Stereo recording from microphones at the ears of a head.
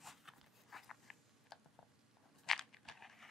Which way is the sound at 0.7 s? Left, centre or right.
Left.